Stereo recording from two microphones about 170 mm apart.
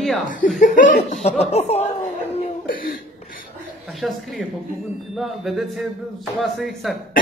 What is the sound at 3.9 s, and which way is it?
A man's voice, centre (ahead or behind).